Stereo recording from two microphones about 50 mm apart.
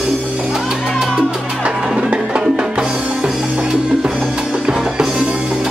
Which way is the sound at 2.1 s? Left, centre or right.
Right.